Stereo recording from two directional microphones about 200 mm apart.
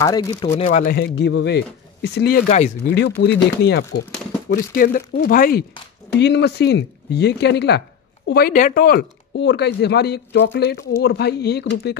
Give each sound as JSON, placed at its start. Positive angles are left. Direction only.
{"t": 0.0, "sound": "speech", "side_deg": 20}
{"t": 0.7, "sound": "speech", "side_deg": 45}
{"t": 4.7, "sound": "speech", "side_deg": 45}
{"t": 6.1, "sound": "speech", "side_deg": 60}
{"t": 9.3, "sound": "speech", "side_deg": 60}